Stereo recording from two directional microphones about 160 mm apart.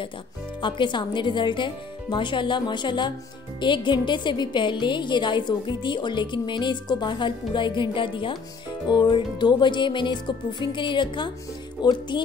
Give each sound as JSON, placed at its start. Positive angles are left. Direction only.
{"t": 0.6, "sound": "a woman's voice", "side_deg": 30}